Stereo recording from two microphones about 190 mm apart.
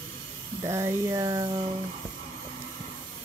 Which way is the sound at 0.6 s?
15° right (ahead or behind).